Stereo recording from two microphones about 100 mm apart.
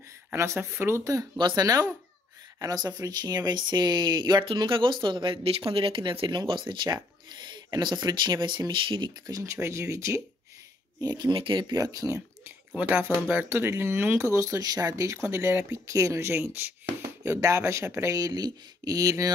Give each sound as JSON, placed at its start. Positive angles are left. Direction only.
{"t": 0.3, "sound": "speech", "side_deg": -25}
{"t": 1.4, "sound": "speech", "side_deg": -40}
{"t": 11.0, "sound": "speech", "side_deg": -45}
{"t": 11.7, "sound": "speech", "side_deg": -35}
{"t": 12.7, "sound": "speech", "side_deg": -20}